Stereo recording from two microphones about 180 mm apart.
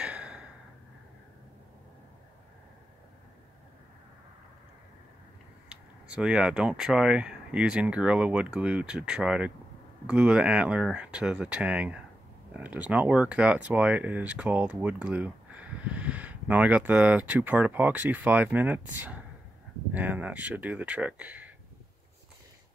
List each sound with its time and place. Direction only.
0.0 s sigh: 5° right (ahead or behind)
5.7 s speech: 5° right (ahead or behind)